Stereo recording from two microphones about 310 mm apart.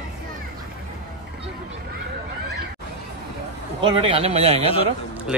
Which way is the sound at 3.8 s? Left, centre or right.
Centre.